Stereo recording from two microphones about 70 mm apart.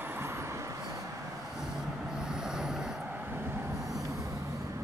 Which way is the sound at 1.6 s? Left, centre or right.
Centre.